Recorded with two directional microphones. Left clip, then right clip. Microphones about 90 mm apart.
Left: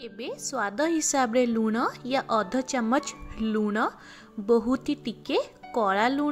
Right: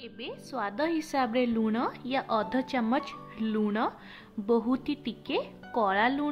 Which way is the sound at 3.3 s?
40° left (ahead or behind).